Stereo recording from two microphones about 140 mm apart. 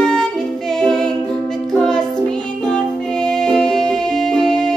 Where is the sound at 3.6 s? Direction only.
5° left (ahead or behind).